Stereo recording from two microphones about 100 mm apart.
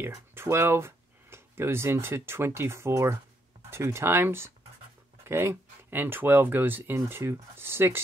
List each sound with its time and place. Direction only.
0.0 s speech: 25° right (ahead or behind)